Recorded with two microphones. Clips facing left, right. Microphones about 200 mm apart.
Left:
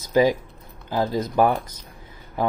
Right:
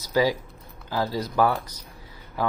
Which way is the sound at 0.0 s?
20° left (ahead or behind).